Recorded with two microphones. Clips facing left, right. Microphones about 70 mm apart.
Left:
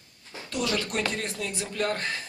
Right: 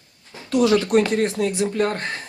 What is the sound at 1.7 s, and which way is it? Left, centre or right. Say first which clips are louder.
Speech: right 6 dB; right.